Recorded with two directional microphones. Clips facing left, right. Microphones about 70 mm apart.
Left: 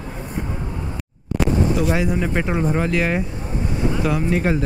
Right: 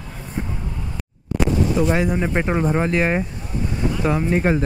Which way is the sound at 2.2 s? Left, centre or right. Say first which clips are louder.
Right 1 dB; right.